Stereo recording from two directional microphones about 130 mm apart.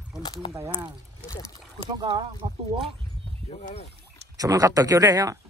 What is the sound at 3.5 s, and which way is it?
Speech, 50° left (ahead or behind).